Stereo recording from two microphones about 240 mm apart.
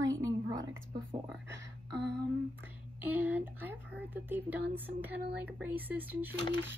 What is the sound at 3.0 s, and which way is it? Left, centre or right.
A woman's voice, centre.